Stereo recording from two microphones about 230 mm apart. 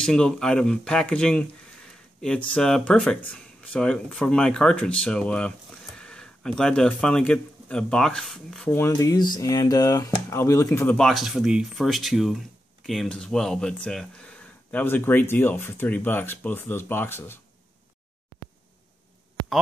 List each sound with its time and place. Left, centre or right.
0.0 s speech: centre